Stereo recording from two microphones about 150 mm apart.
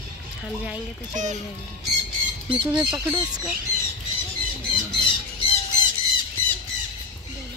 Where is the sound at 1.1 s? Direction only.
55° right (ahead or behind).